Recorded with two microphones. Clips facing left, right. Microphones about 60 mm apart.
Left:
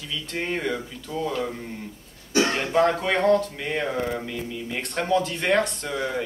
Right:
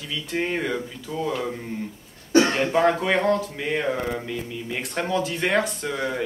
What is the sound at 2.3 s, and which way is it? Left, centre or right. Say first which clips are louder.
Cough: right 4 dB; right.